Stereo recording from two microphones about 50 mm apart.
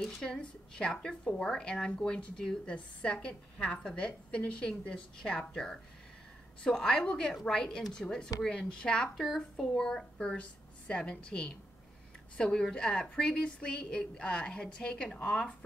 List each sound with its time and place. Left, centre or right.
0.0 s a woman's voice: centre
9.1 s a woman's voice: centre
9.8 s a woman's voice: centre